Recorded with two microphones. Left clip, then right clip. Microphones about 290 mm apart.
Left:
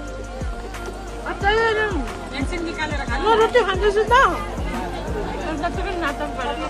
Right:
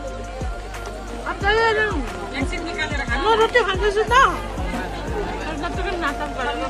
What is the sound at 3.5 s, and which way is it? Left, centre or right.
Speech, centre.